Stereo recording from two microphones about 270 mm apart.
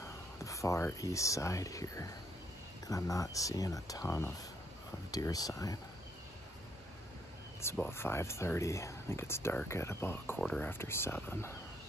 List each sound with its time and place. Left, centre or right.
0.0 s speech: centre
7.6 s speech: centre